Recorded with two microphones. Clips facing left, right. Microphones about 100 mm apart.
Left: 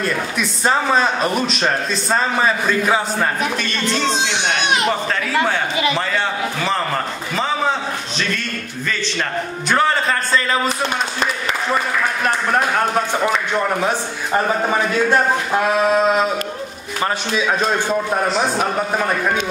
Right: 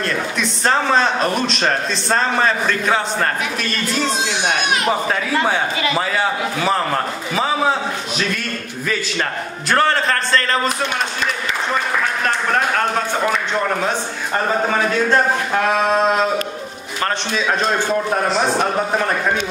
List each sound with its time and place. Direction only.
0.0 s a man's voice: 5° left (ahead or behind)
4.8 s a man's voice: 15° right (ahead or behind)
9.7 s a man's voice: 5° left (ahead or behind)
13.8 s a man's voice: 10° left (ahead or behind)